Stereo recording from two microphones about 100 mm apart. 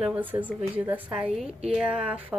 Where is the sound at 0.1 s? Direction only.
15° right (ahead or behind).